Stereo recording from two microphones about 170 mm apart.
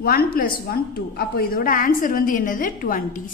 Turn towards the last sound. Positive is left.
turn(degrees=55)  # may be behind; listen again after turning